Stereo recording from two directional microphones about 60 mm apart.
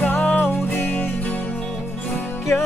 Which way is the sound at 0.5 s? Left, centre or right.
Left.